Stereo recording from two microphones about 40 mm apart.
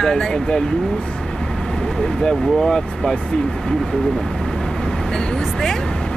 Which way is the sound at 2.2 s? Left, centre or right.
Centre.